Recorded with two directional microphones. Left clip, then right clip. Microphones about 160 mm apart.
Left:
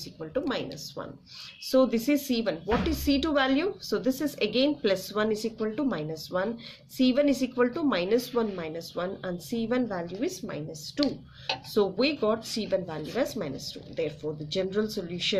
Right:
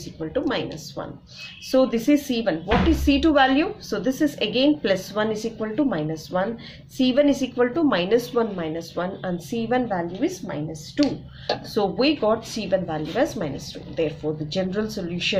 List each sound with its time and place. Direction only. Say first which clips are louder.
0.2 s a woman's voice: right 6 dB; 35° left (ahead or behind)